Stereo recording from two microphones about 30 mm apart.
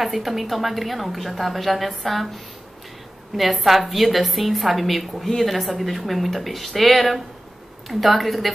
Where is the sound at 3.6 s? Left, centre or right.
Centre.